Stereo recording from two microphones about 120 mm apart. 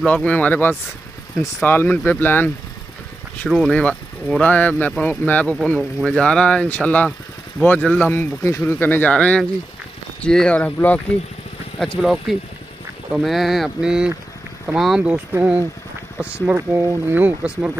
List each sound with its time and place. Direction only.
0.0 s speech: 10° left (ahead or behind)
3.4 s speech: 5° right (ahead or behind)
3.7 s speech: 10° left (ahead or behind)
5.6 s speech: centre (ahead or behind)
11.8 s speech: centre (ahead or behind)